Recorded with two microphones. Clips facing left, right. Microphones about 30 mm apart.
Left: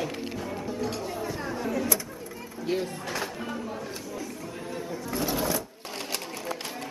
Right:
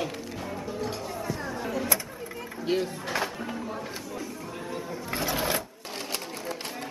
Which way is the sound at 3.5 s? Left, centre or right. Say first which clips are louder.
Even; centre.